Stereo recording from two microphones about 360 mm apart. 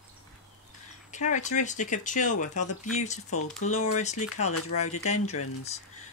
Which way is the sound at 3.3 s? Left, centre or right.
Left.